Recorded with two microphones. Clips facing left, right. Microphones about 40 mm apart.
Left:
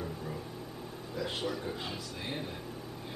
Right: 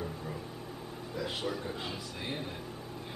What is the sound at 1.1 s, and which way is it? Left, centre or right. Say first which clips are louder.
Speech: even; centre.